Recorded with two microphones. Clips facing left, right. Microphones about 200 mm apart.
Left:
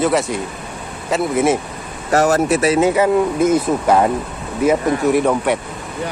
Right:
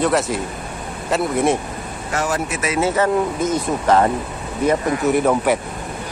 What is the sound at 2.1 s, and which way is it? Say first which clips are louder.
Speech: left 9 dB; 40° left (ahead or behind).